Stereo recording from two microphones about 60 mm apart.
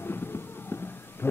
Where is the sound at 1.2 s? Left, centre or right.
Left.